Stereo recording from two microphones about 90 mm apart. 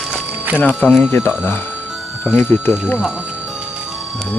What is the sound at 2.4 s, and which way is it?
Speech, 25° left (ahead or behind).